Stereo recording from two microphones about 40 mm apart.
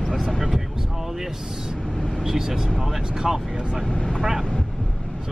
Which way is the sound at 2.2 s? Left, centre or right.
Centre.